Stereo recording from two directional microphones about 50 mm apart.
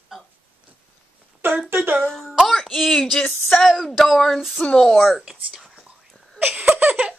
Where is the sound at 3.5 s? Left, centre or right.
Centre.